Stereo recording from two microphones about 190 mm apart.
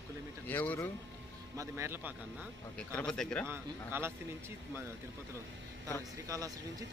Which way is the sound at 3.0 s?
5° left (ahead or behind).